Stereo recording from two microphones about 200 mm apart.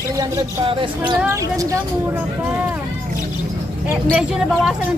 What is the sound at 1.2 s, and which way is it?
Speech, 15° right (ahead or behind).